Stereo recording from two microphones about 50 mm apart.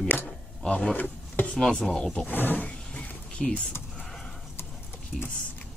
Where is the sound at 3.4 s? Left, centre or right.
Centre.